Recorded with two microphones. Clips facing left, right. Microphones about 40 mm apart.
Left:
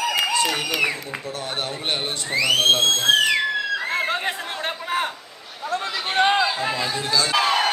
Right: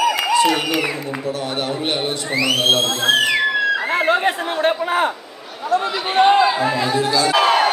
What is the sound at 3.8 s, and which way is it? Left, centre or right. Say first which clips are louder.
Chatter: right 7 dB; right.